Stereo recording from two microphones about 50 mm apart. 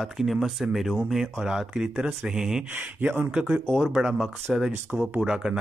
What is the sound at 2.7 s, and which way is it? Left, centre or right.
Speech, right.